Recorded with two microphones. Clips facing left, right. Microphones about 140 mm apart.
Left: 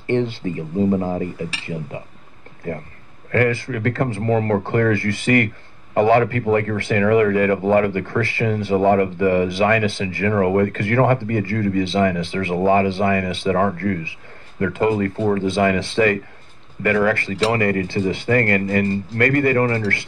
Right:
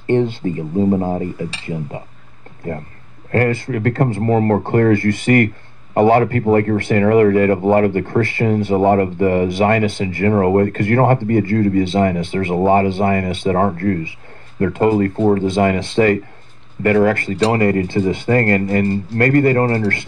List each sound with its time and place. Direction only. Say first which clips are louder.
0.0 s speech: right 4 dB; 50° right (ahead or behind)
0.7 s speech: right 2 dB; 30° right (ahead or behind)
3.3 s speech: right 2 dB; 35° right (ahead or behind)
18.3 s speech: right 2 dB; 35° right (ahead or behind)